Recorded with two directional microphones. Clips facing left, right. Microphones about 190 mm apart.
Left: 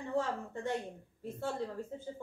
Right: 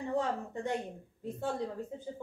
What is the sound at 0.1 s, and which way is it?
A woman's voice, 15° right (ahead or behind).